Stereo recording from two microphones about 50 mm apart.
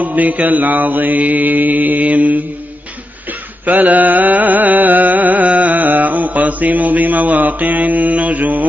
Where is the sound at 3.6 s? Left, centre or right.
Right.